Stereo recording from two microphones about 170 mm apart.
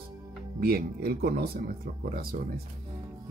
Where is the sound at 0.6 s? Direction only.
65° right (ahead or behind).